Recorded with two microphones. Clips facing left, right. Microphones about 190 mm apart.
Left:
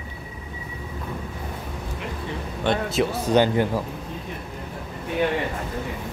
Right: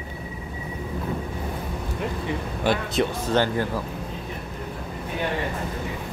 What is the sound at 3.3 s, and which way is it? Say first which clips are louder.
Speech: left 3 dB; 15° left (ahead or behind).